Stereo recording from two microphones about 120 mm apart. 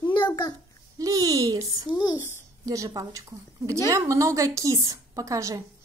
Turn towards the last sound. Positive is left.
turn(degrees=-25)  # may be behind; listen again after turning